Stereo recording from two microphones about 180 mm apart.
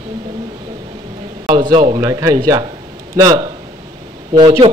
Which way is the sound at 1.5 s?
25° right (ahead or behind).